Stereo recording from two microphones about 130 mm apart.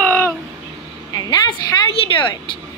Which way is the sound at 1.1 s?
30° left (ahead or behind).